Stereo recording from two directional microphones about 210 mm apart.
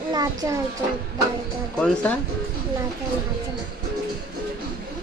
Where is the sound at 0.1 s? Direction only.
15° right (ahead or behind).